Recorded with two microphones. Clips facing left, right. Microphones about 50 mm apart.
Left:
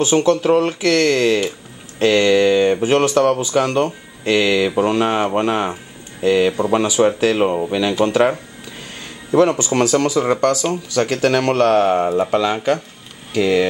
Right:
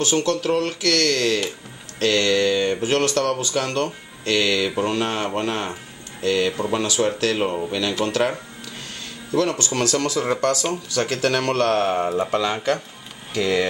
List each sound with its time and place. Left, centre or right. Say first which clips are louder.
0.0 s speech: left 6 dB; centre